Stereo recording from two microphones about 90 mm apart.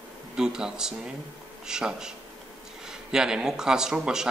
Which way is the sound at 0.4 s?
10° right (ahead or behind).